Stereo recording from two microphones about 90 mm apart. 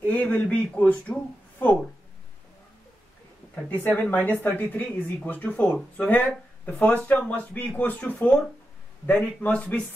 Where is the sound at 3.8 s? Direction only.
15° left (ahead or behind).